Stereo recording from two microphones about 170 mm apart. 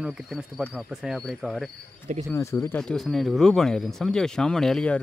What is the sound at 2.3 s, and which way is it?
Speech, 15° left (ahead or behind).